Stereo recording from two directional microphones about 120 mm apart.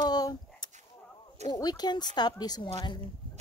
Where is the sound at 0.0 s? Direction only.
35° left (ahead or behind).